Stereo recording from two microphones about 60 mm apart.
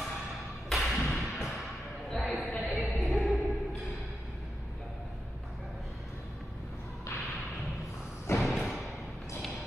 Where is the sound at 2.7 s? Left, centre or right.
Centre.